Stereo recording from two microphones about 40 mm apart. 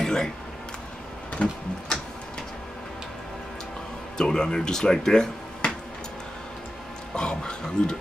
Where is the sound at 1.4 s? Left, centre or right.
Left.